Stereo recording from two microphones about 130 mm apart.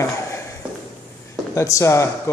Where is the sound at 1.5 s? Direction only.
25° left (ahead or behind).